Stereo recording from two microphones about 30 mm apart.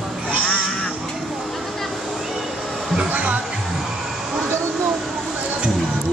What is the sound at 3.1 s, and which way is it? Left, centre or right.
Speech, right.